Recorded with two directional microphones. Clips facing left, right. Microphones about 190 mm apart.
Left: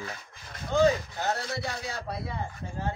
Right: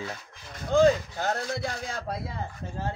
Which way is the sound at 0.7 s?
50° right (ahead or behind).